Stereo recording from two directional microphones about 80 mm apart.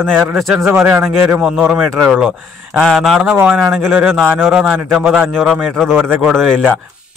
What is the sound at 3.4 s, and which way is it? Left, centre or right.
Speech, centre.